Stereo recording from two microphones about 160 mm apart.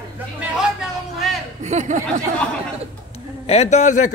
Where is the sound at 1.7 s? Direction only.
50° right (ahead or behind).